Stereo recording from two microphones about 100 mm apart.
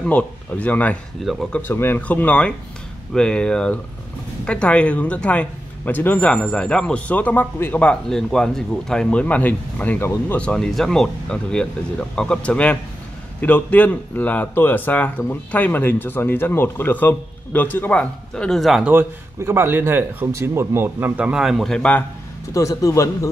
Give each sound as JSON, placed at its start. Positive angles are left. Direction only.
{"t": 0.0, "sound": "speech", "side_deg": 15}
{"t": 18.3, "sound": "speech", "side_deg": 5}
{"t": 18.9, "sound": "speech", "side_deg": -20}
{"t": 21.7, "sound": "speech", "side_deg": 15}
{"t": 22.5, "sound": "speech", "side_deg": 30}